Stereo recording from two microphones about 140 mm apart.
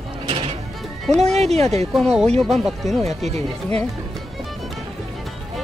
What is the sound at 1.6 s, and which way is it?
Speech, 50° right (ahead or behind).